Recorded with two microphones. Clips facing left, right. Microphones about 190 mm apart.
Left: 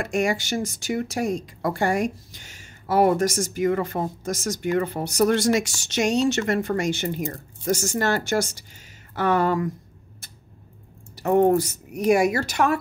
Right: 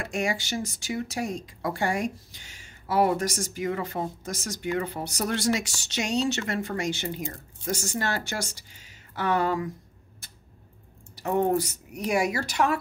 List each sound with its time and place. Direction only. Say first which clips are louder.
0.0 s speech: left 5 dB; 50° left (ahead or behind)
11.2 s speech: left 6 dB; 50° left (ahead or behind)